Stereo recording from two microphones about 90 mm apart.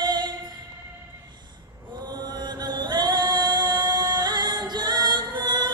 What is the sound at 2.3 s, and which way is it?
Chant, 55° right (ahead or behind).